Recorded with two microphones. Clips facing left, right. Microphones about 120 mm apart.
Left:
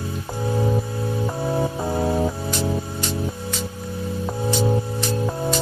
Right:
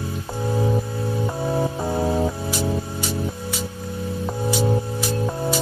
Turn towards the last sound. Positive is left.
turn(degrees=0)  # may be behind; listen again after turning